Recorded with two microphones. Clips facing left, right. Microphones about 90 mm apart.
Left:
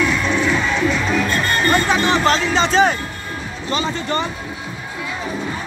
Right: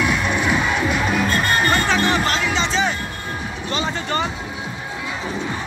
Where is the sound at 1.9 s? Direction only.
20° left (ahead or behind).